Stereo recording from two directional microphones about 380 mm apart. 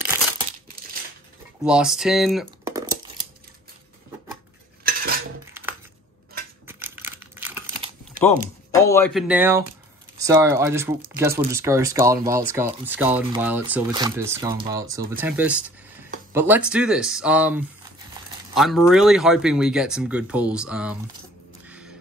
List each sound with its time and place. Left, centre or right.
1.6 s speech: centre
4.8 s cutlery: right
5.5 s a sound: centre
6.7 s crumpling: centre
8.8 s speech: centre